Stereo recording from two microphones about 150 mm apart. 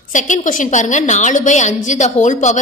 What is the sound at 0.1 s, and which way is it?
A woman's voice, 55° left (ahead or behind).